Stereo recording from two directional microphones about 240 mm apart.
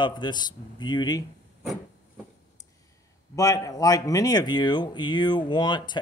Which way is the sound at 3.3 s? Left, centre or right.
Centre.